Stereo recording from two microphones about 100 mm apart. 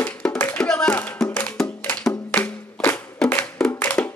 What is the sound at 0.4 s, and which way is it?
Music, 20° left (ahead or behind).